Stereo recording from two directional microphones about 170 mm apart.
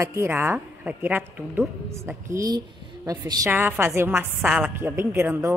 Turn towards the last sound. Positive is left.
turn(degrees=-15)  # may be behind; listen again after turning